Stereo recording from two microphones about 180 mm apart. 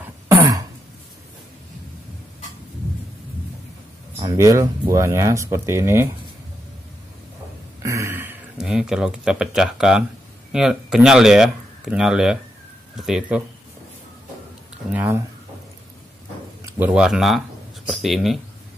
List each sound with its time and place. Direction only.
0.3 s throat clearing: 15° right (ahead or behind)
4.2 s speech: 20° right (ahead or behind)
7.8 s a sound: 15° right (ahead or behind)
10.5 s speech: 5° right (ahead or behind)
14.9 s speech: 10° right (ahead or behind)
16.6 s speech: 10° right (ahead or behind)